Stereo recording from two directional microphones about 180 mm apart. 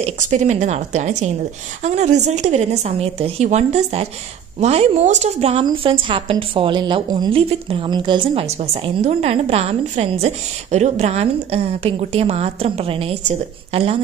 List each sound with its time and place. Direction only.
0.0 s a woman's voice: 40° right (ahead or behind)